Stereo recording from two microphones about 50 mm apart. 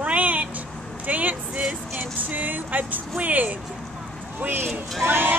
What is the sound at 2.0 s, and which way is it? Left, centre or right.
Music, right.